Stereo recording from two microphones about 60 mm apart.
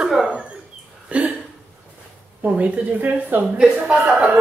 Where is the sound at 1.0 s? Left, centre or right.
Right.